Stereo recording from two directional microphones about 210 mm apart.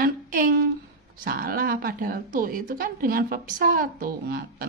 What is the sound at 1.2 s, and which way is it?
A woman's voice, 45° right (ahead or behind).